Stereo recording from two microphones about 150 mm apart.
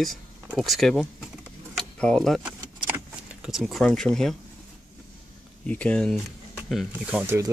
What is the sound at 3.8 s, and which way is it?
Speech, 5° left (ahead or behind).